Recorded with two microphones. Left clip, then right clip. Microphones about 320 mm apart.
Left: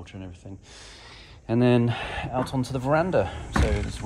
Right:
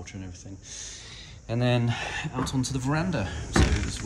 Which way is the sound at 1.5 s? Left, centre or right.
Left.